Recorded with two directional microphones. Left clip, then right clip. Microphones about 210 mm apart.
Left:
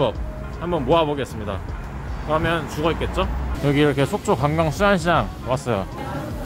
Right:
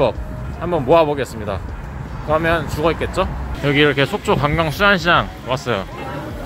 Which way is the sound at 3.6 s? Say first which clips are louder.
Right 4 dB; 10° left (ahead or behind).